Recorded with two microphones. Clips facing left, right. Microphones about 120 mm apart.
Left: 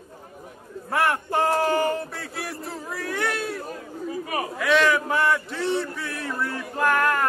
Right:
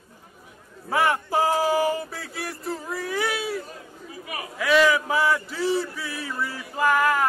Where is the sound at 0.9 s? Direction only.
Centre (ahead or behind).